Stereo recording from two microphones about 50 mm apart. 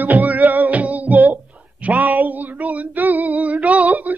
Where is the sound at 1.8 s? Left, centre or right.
Right.